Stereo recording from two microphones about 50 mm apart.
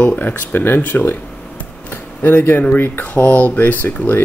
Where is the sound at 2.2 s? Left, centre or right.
Left.